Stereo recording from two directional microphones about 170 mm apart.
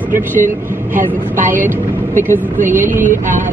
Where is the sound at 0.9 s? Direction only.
10° right (ahead or behind).